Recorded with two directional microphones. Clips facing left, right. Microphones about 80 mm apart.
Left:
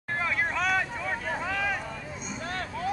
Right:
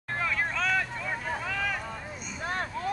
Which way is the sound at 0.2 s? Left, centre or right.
Left.